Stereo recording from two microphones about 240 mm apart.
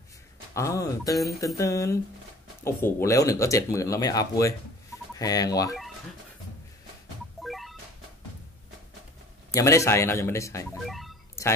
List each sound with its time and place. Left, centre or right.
0.6 s speech: centre
7.4 s music: centre
9.5 s speech: centre
10.9 s music: centre